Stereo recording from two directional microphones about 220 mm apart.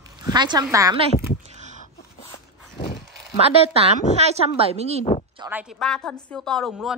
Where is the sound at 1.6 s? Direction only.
35° right (ahead or behind).